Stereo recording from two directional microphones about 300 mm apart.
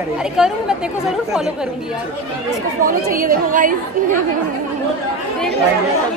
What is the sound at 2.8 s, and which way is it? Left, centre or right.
Speech, right.